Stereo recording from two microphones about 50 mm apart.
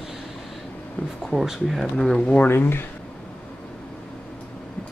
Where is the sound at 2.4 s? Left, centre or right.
Left.